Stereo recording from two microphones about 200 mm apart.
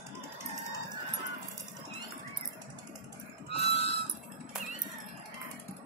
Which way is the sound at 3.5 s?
30° left (ahead or behind).